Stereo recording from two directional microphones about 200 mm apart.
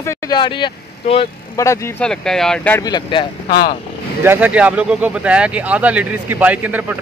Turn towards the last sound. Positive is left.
turn(degrees=-10)  # may be behind; listen again after turning